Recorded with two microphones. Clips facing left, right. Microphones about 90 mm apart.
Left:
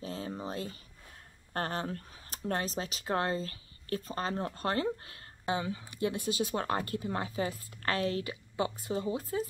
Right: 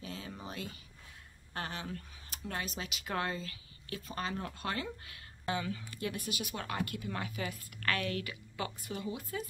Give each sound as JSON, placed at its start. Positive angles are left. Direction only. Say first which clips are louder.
{"t": 0.0, "sound": "a sound", "louder": "left 6 dB", "side_deg": 35}
{"t": 1.5, "sound": "speech", "louder": "left 6 dB", "side_deg": 45}
{"t": 5.5, "sound": "speech", "louder": "left 3 dB", "side_deg": 25}